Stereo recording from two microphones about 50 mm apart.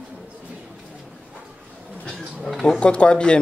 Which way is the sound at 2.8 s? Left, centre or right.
Left.